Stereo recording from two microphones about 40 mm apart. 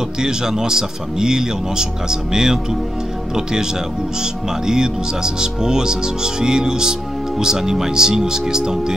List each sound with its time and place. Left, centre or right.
0.2 s speech: centre
4.2 s speech: centre